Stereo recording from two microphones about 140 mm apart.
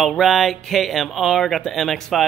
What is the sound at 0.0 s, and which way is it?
Speech, centre (ahead or behind).